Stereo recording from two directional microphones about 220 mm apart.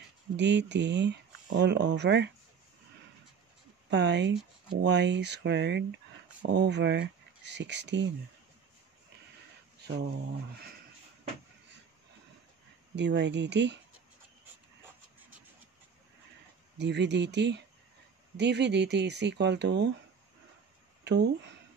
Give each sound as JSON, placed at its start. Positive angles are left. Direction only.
{"t": 0.4, "sound": "speech", "side_deg": -55}
{"t": 3.9, "sound": "speech", "side_deg": -55}
{"t": 9.8, "sound": "a sound", "side_deg": -50}
{"t": 12.9, "sound": "speech", "side_deg": -50}
{"t": 16.7, "sound": "speech", "side_deg": -50}
{"t": 21.0, "sound": "a sound", "side_deg": -50}